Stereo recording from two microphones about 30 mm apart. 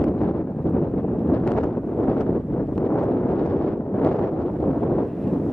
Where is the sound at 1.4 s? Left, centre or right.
Left.